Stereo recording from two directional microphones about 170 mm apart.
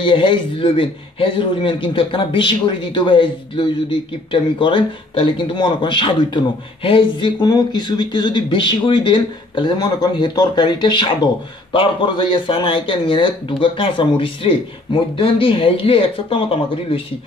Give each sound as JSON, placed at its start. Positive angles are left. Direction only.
{"t": 0.0, "sound": "speech", "side_deg": 30}